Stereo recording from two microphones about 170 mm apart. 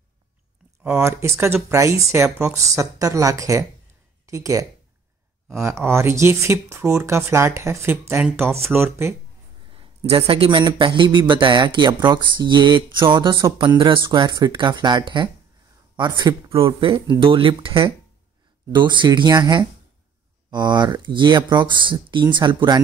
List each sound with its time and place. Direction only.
0.8 s speech: 15° right (ahead or behind)
9.8 s speech: 35° right (ahead or behind)